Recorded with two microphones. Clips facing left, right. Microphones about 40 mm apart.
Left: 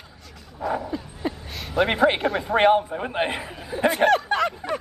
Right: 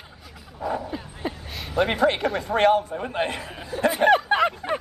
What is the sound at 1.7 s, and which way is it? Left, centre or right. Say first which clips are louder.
A man's voice: left 1 dB; centre.